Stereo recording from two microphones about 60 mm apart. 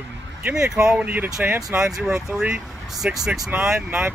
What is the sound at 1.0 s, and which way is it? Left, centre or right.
Speech, right.